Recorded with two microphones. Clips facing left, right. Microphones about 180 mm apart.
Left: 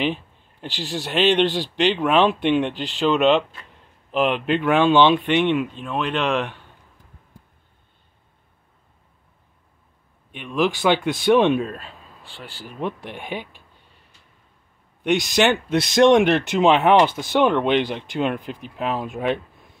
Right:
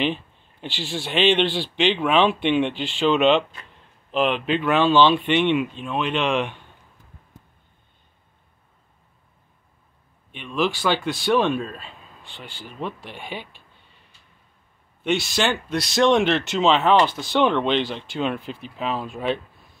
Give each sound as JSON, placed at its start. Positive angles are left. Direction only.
{"t": 0.0, "sound": "a sound", "side_deg": 5}
{"t": 0.7, "sound": "speech", "side_deg": 40}
{"t": 1.1, "sound": "speech", "side_deg": 5}
{"t": 1.4, "sound": "a man's voice", "side_deg": 45}
{"t": 2.0, "sound": "speech", "side_deg": 5}
{"t": 2.6, "sound": "speech", "side_deg": 40}
{"t": 3.0, "sound": "speech", "side_deg": 0}
{"t": 10.3, "sound": "speech", "side_deg": 10}
{"t": 11.7, "sound": "speech", "side_deg": 5}
{"t": 13.1, "sound": "speech", "side_deg": 55}
{"t": 15.0, "sound": "speech", "side_deg": 15}
{"t": 17.4, "sound": "speech", "side_deg": 10}